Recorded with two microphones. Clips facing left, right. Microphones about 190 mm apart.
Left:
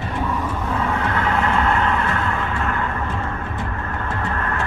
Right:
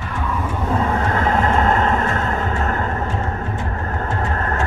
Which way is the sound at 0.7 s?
40° right (ahead or behind).